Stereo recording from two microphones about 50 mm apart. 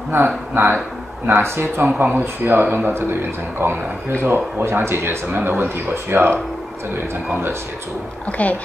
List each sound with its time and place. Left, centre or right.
0.6 s speech: right
1.9 s speech: right
2.9 s speech: right
8.3 s speech: left